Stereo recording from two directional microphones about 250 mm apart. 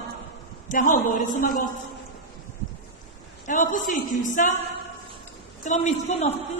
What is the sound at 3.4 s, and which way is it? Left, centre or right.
A man's voice, left.